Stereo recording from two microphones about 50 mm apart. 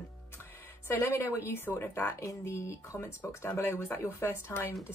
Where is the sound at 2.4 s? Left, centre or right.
Left.